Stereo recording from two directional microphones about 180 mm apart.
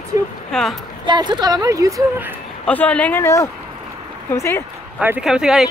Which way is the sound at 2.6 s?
10° left (ahead or behind).